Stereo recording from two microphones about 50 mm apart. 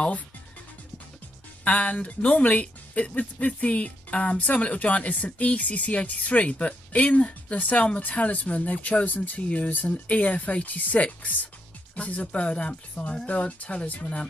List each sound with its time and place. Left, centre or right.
1.6 s speech: left